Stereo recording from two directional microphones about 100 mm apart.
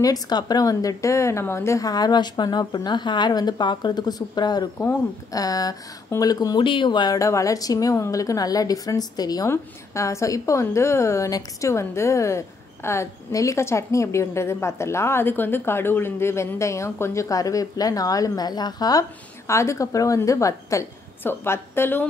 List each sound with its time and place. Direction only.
0.0 s a woman's voice: 40° left (ahead or behind)
7.2 s a woman's voice: 30° left (ahead or behind)
9.5 s a woman's voice: 30° left (ahead or behind)